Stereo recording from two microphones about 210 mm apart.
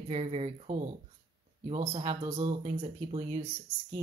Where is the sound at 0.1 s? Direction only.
30° right (ahead or behind).